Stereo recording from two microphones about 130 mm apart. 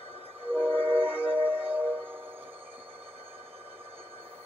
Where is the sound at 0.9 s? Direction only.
15° right (ahead or behind).